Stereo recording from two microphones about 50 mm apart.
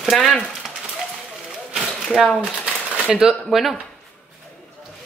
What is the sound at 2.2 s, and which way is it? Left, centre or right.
Speech, centre.